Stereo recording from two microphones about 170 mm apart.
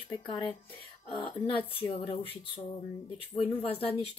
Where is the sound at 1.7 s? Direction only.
35° left (ahead or behind).